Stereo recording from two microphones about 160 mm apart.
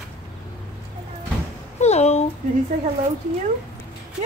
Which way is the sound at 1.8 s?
45° left (ahead or behind).